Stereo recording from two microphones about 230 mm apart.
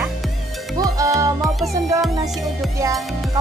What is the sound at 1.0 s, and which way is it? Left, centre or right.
Music, centre.